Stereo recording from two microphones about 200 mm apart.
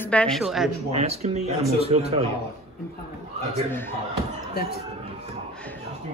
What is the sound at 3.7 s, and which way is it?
Speech, 10° left (ahead or behind).